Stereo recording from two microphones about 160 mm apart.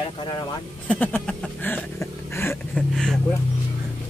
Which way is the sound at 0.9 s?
10° left (ahead or behind).